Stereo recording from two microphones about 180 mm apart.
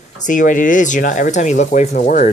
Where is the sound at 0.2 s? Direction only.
45° left (ahead or behind).